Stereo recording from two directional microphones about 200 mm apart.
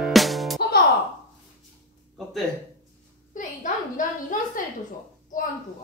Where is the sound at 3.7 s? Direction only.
40° left (ahead or behind).